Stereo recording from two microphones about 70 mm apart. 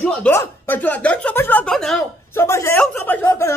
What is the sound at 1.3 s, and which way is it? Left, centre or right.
Speech, left.